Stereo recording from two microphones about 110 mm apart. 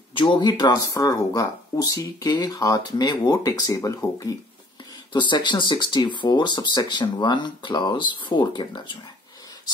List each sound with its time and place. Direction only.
0.1 s speech: 50° left (ahead or behind); by 4.0 s 30° left (ahead or behind)
5.1 s speech: 45° left (ahead or behind)